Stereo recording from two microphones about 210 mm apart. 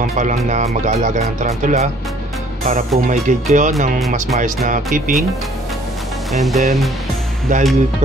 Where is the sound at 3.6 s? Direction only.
35° right (ahead or behind).